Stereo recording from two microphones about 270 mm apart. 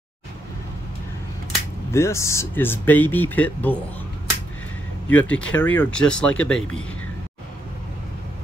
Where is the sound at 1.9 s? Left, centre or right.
Centre.